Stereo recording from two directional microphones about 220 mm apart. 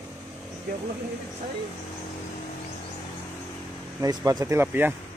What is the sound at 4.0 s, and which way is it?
Speech, 15° right (ahead or behind).